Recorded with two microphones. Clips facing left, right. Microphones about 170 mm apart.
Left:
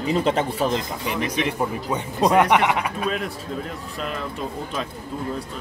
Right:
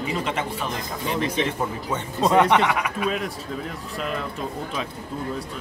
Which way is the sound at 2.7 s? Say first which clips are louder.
Left 1 dB; 30° left (ahead or behind).